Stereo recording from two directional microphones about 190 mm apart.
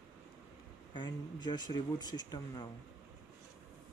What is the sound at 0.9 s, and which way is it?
Speech, 25° left (ahead or behind).